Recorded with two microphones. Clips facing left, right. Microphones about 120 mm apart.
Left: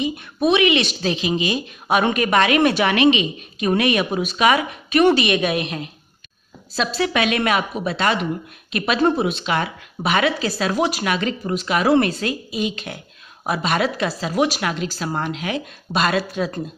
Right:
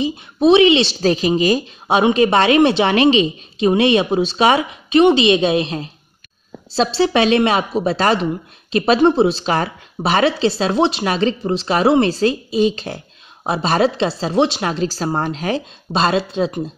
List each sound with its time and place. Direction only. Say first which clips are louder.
0.0 s speech: right 5 dB; 25° right (ahead or behind)
1.0 s a woman's voice: right 6 dB; 40° right (ahead or behind)
1.9 s a woman's voice: right 5 dB; 25° right (ahead or behind)